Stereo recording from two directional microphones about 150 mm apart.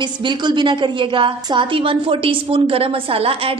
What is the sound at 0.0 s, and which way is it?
A woman's voice, 30° right (ahead or behind).